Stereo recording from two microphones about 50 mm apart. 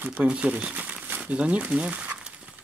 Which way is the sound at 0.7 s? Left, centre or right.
Right.